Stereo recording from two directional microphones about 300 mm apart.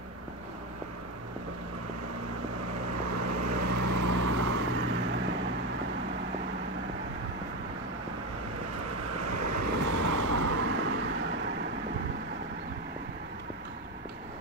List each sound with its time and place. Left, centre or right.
3.1 s vehicle: right
4.3 s vehicle: right
9.1 s vehicle: right